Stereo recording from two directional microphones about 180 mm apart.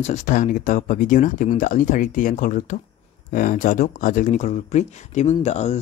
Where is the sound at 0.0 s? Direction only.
40° left (ahead or behind).